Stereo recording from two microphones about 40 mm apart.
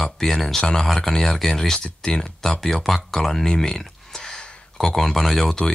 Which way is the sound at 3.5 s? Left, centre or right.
Centre.